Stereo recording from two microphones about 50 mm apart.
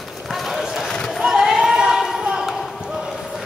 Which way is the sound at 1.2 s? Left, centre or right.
Centre.